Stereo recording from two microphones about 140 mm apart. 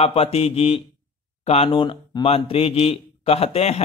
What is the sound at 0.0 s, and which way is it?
Speech, 45° left (ahead or behind).